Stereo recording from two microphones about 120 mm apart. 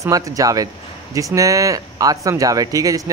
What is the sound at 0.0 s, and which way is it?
Speech, 30° right (ahead or behind).